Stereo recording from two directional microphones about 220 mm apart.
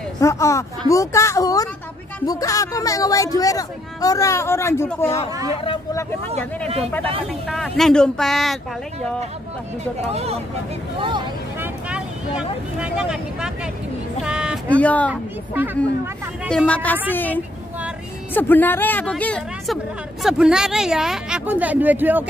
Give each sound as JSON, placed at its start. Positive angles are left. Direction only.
{"t": 0.2, "sound": "speech", "side_deg": 15}
{"t": 5.6, "sound": "speech", "side_deg": 25}
{"t": 7.4, "sound": "a woman's voice", "side_deg": 0}
{"t": 10.1, "sound": "speech", "side_deg": -30}
{"t": 11.6, "sound": "speech", "side_deg": -5}
{"t": 14.2, "sound": "a sound", "side_deg": -5}
{"t": 14.7, "sound": "speech", "side_deg": 5}
{"t": 15.5, "sound": "a woman's voice", "side_deg": -10}
{"t": 16.4, "sound": "a woman's voice", "side_deg": 5}